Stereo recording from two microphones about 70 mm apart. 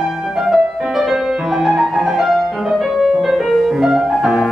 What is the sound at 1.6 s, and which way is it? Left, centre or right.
Music, centre.